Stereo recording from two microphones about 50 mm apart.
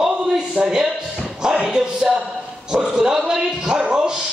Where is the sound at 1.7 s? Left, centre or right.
Centre.